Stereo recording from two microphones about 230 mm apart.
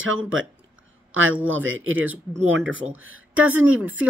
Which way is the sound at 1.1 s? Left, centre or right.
Right.